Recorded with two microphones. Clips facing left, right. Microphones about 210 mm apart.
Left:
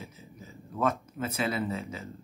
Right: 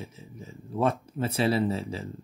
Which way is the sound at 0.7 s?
30° right (ahead or behind).